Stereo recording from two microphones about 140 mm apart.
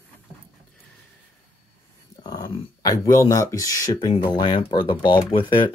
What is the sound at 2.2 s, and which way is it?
Speech, 30° left (ahead or behind).